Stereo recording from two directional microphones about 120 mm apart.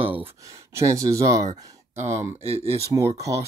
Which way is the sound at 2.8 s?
25° right (ahead or behind).